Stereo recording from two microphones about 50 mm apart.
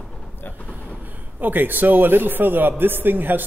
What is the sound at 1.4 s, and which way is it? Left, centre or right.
A man's voice, right.